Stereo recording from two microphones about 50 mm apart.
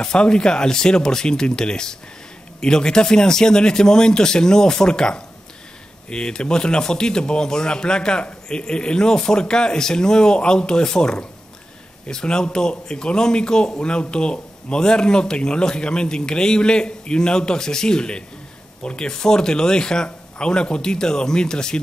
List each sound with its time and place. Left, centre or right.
0.0 s speech: centre